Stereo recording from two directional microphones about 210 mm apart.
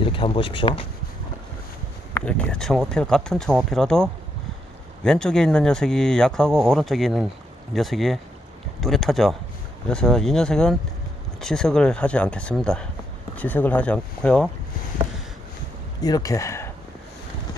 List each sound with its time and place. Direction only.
0.0 s speech: 25° left (ahead or behind)
2.1 s speech: 5° left (ahead or behind)
16.0 s speech: 15° left (ahead or behind)